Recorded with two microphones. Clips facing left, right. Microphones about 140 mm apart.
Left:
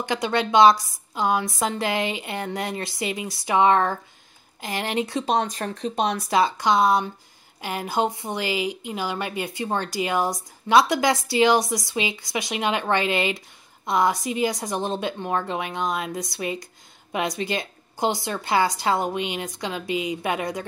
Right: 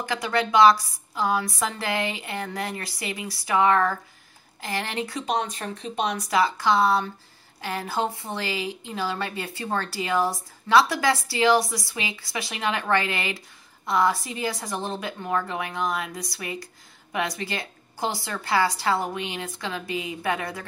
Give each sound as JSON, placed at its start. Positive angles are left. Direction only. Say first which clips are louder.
{"t": 0.0, "sound": "a woman's voice", "louder": "left 2 dB", "side_deg": 20}
{"t": 5.2, "sound": "speech", "louder": "left 3 dB", "side_deg": 35}
{"t": 6.3, "sound": "a woman's voice", "louder": "left 1 dB", "side_deg": 20}